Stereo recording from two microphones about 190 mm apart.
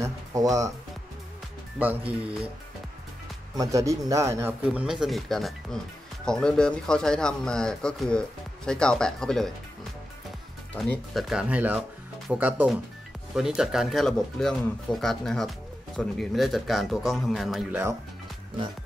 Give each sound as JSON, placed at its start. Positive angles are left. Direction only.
{"t": 0.0, "sound": "speech", "side_deg": -15}
{"t": 1.8, "sound": "speech", "side_deg": -10}
{"t": 3.5, "sound": "speech", "side_deg": -15}
{"t": 10.7, "sound": "speech", "side_deg": 5}